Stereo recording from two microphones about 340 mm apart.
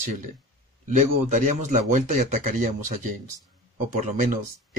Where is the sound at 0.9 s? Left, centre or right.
Right.